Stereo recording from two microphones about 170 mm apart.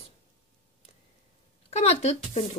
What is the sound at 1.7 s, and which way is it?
Speech, 40° left (ahead or behind).